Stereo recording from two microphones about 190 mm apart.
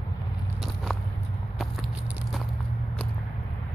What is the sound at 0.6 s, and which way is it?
Biting, centre (ahead or behind).